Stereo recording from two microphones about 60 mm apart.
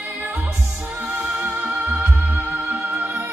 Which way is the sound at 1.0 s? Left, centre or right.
Right.